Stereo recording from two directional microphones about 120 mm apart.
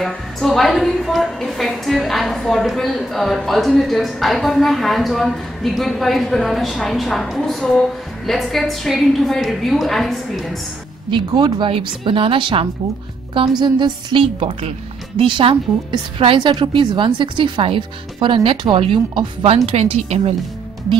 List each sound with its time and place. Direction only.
0.0 s a woman's voice: centre (ahead or behind)
11.1 s speech: 40° right (ahead or behind); by 20.3 s 60° right (ahead or behind)